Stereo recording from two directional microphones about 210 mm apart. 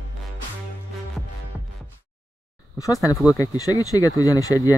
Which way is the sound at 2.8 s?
15° left (ahead or behind).